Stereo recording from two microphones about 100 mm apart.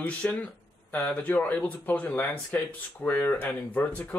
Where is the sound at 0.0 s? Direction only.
15° left (ahead or behind).